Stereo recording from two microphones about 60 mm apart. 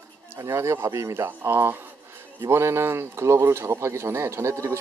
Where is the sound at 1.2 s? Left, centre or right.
Right.